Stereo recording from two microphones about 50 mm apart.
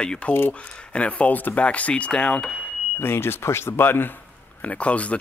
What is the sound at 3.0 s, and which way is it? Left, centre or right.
Speech, left.